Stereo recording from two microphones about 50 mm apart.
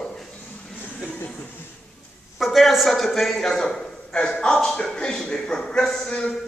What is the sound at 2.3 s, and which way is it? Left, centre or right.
A man's voice, centre.